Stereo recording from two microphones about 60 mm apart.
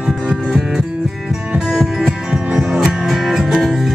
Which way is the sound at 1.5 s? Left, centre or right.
Centre.